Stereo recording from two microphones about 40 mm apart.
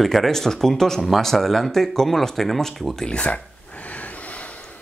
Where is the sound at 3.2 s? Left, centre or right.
Left.